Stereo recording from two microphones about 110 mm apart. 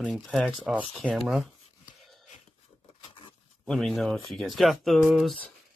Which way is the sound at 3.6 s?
5° left (ahead or behind).